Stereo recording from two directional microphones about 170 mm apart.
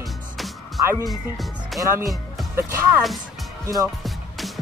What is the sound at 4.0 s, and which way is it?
Music, centre (ahead or behind).